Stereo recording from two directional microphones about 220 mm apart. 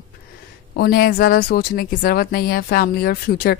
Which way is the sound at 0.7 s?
40° left (ahead or behind).